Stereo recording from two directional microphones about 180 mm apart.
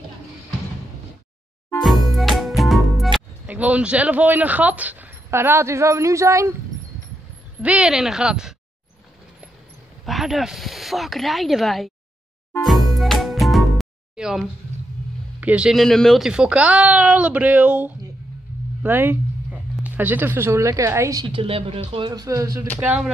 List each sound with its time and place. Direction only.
1.8 s music: centre (ahead or behind); by 6.5 s 15° right (ahead or behind)
7.6 s speech: 5° right (ahead or behind)
10.0 s speech: centre (ahead or behind)
12.6 s music: centre (ahead or behind)
15.4 s speech: 5° right (ahead or behind)
22.8 s speech: 5° right (ahead or behind)